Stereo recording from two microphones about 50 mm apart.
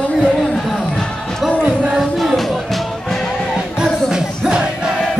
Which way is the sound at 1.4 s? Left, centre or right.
Centre.